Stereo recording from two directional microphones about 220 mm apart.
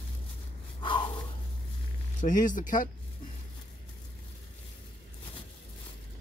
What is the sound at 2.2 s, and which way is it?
Speech, 35° left (ahead or behind).